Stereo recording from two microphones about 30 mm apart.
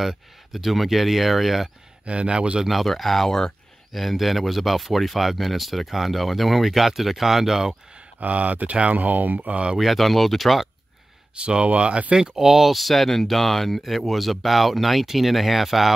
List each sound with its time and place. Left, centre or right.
0.5 s speech: centre
2.0 s speech: right
2.6 s speech: centre
2.9 s speech: centre
3.3 s speech: centre
3.9 s speech: centre
8.2 s speech: right
9.5 s speech: right
9.8 s speech: centre
11.3 s speech: right
12.2 s speech: centre
12.7 s speech: centre